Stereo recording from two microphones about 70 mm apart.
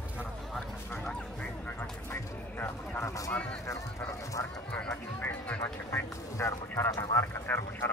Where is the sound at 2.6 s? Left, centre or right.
Left.